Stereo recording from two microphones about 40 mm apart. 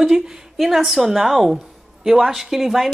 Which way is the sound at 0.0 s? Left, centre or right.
Centre.